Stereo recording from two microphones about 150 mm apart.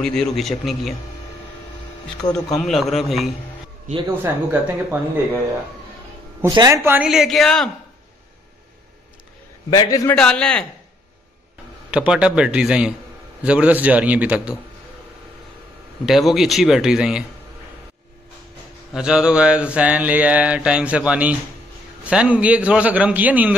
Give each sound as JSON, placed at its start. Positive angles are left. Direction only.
{"t": 0.0, "sound": "speech", "side_deg": 5}
{"t": 2.3, "sound": "speech", "side_deg": 0}
{"t": 4.2, "sound": "mantra", "side_deg": -15}
{"t": 6.4, "sound": "speech", "side_deg": -25}
{"t": 6.8, "sound": "mantra", "side_deg": -15}
{"t": 7.1, "sound": "speech", "side_deg": 0}
{"t": 9.7, "sound": "a man's voice", "side_deg": 25}
{"t": 10.1, "sound": "a man's voice", "side_deg": 5}
{"t": 11.9, "sound": "speech", "side_deg": -5}
{"t": 13.4, "sound": "mantra", "side_deg": -10}
{"t": 16.1, "sound": "speech", "side_deg": 0}
{"t": 18.9, "sound": "mantra", "side_deg": -5}